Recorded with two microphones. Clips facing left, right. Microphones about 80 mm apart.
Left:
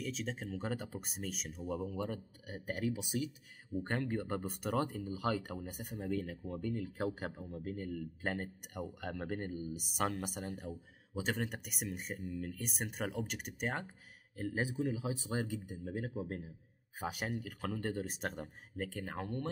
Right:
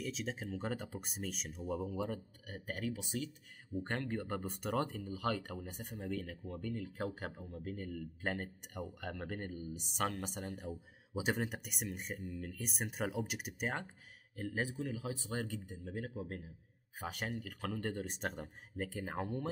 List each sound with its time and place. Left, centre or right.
0.0 s speech: centre
15.4 s speech: centre